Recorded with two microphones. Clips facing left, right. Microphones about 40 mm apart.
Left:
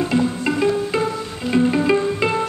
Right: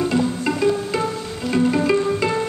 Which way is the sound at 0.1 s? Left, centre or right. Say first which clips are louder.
Left 1 dB; centre.